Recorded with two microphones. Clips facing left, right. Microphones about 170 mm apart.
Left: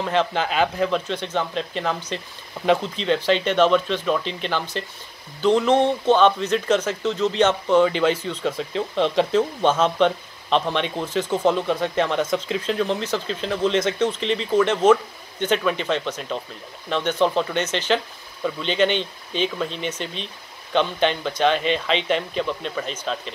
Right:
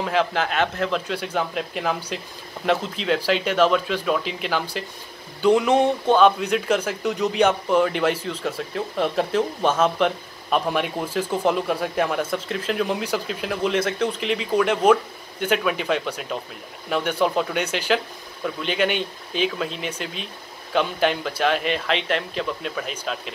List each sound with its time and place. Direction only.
0.0 s speech: centre (ahead or behind)
1.0 s speech: 10° right (ahead or behind)